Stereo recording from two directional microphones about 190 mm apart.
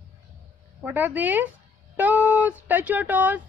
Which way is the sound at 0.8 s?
10° right (ahead or behind).